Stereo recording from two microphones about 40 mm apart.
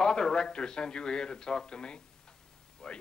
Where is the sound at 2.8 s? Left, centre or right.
Centre.